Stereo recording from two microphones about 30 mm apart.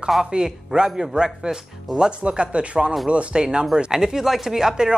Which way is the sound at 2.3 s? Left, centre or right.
Right.